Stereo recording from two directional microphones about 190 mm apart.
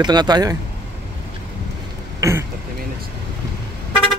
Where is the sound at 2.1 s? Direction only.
15° right (ahead or behind).